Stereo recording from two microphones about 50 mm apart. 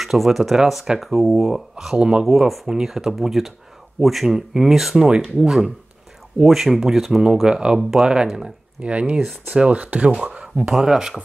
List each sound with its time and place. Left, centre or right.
0.0 s speech: centre
8.8 s speech: right